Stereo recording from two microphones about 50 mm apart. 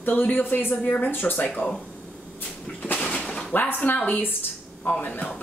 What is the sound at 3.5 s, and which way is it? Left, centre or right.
A woman's voice, left.